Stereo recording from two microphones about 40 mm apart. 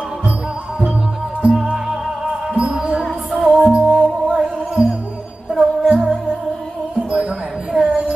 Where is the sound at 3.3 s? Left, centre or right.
Centre.